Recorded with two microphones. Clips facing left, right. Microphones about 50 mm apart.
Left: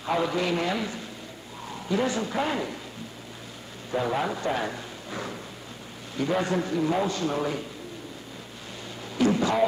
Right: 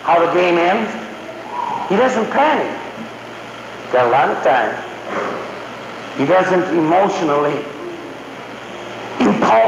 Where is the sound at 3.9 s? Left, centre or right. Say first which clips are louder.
Right 14 dB; right.